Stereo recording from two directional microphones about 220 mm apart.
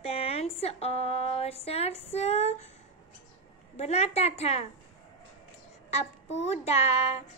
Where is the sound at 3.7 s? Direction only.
30° left (ahead or behind).